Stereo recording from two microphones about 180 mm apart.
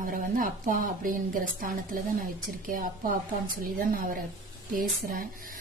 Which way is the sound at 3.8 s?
50° right (ahead or behind).